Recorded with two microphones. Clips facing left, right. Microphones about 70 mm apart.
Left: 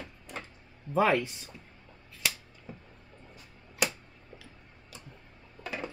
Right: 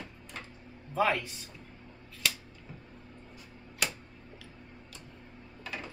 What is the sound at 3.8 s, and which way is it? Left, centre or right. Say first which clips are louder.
Tick-tock: left 3 dB; centre.